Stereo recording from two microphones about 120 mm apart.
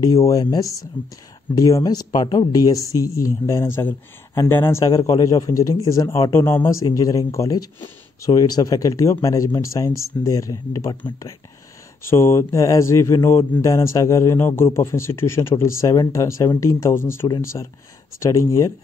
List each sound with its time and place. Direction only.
0.0 s speech: 30° left (ahead or behind)
2.2 s speech: 50° left (ahead or behind)
2.5 s speech: 30° left (ahead or behind)
4.8 s speech: 30° left (ahead or behind)
12.1 s speech: 20° left (ahead or behind)